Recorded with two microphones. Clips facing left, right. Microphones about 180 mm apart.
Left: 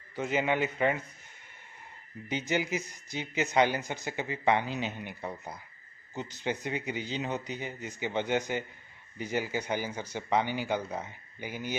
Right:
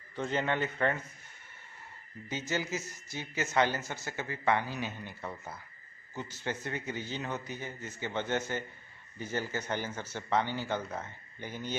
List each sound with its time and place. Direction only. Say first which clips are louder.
0.1 s speech: left 3 dB; 10° left (ahead or behind)
2.2 s speech: left 4 dB; 15° left (ahead or behind)